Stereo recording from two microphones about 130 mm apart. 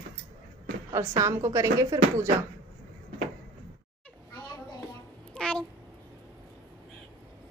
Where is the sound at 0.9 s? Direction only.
25° right (ahead or behind).